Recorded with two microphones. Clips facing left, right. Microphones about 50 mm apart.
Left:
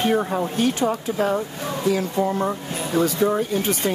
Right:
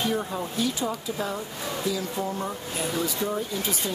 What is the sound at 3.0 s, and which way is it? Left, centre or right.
Speech, left.